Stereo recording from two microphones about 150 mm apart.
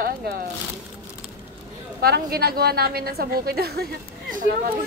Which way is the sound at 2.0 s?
90° right.